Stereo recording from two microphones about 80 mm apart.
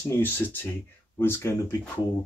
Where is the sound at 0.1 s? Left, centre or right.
Left.